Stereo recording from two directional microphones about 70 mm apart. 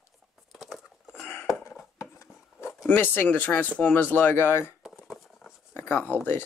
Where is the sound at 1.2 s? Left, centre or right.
Left.